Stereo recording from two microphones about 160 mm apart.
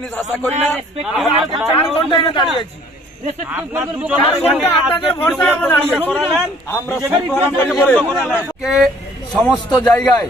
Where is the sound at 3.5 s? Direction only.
10° right (ahead or behind).